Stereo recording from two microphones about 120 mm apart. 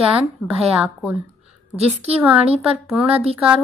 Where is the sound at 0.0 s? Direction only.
Centre (ahead or behind).